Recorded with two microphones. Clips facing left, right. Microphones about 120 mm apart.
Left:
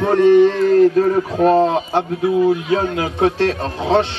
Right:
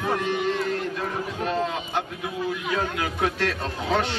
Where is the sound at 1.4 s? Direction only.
45° left (ahead or behind).